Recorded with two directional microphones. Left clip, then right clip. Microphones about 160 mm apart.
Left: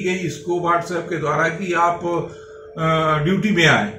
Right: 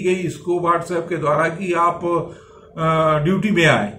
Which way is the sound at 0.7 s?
30° right (ahead or behind).